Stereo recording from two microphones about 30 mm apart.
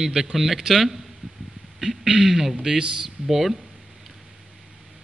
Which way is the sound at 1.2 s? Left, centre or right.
Right.